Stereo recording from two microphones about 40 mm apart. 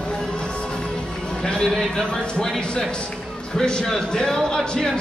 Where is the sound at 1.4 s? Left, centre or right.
Centre.